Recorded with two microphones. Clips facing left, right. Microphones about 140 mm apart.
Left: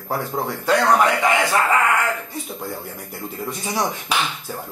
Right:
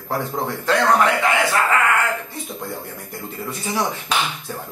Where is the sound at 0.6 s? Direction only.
10° left (ahead or behind).